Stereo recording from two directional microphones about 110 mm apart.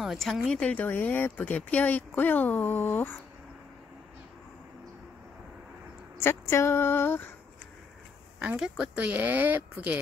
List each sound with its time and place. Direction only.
0.0 s speech: centre (ahead or behind); by 3.2 s 20° left (ahead or behind)
6.1 s speech: 25° left (ahead or behind)
8.4 s speech: 5° right (ahead or behind)